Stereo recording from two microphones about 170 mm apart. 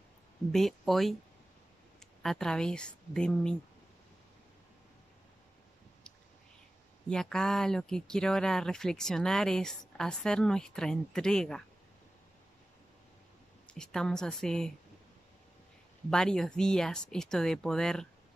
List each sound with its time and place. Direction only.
0.5 s speech: centre (ahead or behind)
2.2 s speech: 5° left (ahead or behind)
7.1 s speech: 5° left (ahead or behind)
13.7 s speech: 5° left (ahead or behind)
16.1 s speech: 5° left (ahead or behind)